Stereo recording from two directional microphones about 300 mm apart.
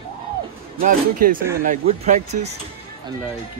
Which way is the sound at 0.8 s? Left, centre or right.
Right.